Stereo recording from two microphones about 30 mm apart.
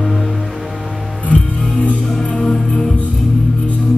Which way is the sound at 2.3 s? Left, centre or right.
Centre.